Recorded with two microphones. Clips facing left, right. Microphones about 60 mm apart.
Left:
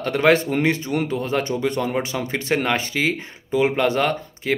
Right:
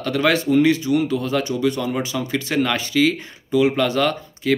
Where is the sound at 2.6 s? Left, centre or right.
Left.